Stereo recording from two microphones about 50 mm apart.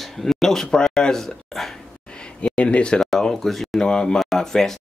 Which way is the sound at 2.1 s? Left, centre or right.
Left.